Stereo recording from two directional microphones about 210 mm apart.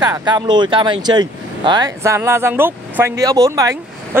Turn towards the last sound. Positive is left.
turn(degrees=-15)  # may be behind; listen again after turning